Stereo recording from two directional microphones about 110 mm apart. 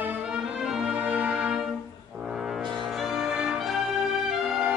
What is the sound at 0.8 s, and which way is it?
Music, 15° right (ahead or behind).